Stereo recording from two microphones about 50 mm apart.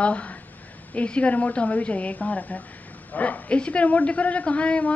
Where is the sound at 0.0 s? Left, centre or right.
Left.